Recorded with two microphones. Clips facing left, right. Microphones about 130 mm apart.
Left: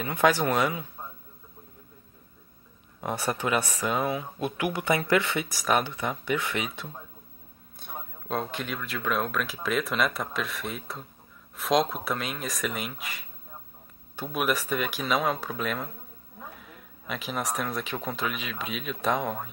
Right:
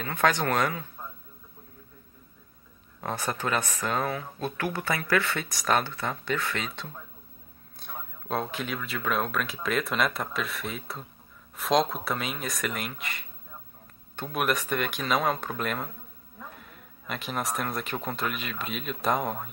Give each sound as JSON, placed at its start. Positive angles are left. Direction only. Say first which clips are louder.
{"t": 0.0, "sound": "speech", "louder": "left 2 dB", "side_deg": 15}
{"t": 3.0, "sound": "speech", "louder": "left 2 dB", "side_deg": 15}
{"t": 7.8, "sound": "speech", "louder": "left 1 dB", "side_deg": 0}